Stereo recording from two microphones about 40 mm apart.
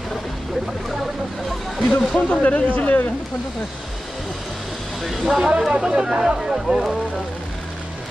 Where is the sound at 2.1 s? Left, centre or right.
Left.